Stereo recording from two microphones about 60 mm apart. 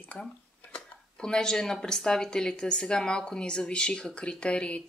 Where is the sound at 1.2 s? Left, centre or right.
Centre.